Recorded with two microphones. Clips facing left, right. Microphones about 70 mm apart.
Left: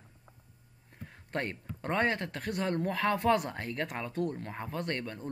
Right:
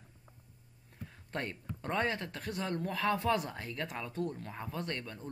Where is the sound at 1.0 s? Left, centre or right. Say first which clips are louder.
Left 4 dB; left.